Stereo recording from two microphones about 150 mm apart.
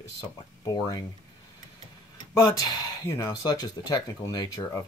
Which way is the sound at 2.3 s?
25° left (ahead or behind).